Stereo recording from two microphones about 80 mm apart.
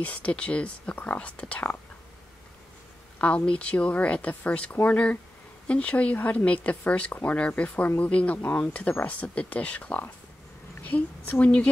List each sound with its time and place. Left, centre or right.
0.0 s speech: centre
3.2 s speech: centre